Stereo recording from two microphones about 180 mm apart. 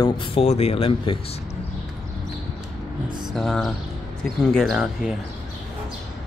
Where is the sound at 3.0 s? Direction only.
25° right (ahead or behind).